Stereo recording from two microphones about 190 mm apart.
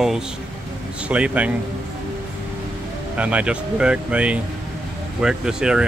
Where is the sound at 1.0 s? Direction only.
5° right (ahead or behind).